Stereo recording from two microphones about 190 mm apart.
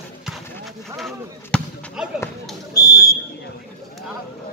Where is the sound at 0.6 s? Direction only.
Centre (ahead or behind).